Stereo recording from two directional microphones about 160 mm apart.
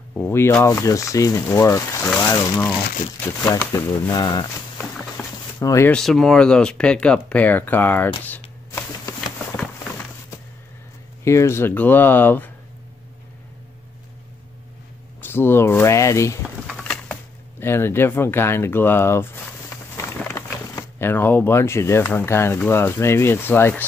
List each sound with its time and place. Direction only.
0.3 s speech: 15° left (ahead or behind)
4.1 s speech: 25° left (ahead or behind)
5.1 s a sound: 20° left (ahead or behind)
5.9 s speech: 5° left (ahead or behind)
8.2 s shuffling cards: 10° left (ahead or behind)
11.2 s speech: 15° left (ahead or behind)
15.2 s speech: 15° left (ahead or behind)
16.4 s a sound: 5° right (ahead or behind)
16.8 s speech: 5° left (ahead or behind)